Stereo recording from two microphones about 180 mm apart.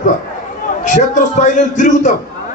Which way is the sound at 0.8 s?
45° left (ahead or behind).